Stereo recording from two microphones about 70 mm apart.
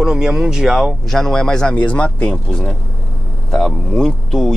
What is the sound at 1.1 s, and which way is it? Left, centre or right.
Speech, centre.